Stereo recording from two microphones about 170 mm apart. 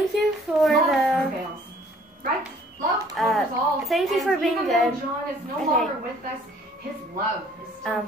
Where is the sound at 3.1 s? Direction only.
Centre (ahead or behind).